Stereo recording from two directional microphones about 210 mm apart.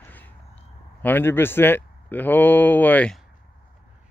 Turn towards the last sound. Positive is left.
turn(degrees=5)  # may be behind; listen again after turning